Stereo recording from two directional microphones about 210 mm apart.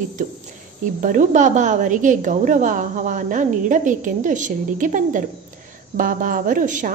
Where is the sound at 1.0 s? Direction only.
35° right (ahead or behind).